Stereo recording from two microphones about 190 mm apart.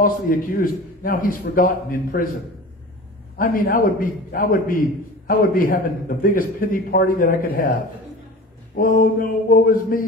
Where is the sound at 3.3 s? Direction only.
45° left (ahead or behind).